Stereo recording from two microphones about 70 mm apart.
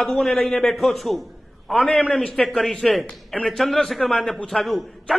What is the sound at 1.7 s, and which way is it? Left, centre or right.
Speech, centre.